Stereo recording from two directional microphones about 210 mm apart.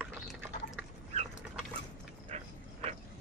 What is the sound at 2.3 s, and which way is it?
Dog, 30° right (ahead or behind).